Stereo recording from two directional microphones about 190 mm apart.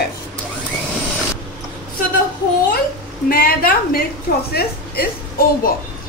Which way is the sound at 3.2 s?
50° left (ahead or behind).